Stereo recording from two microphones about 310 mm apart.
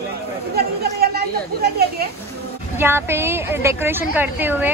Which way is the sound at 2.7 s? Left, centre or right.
Centre.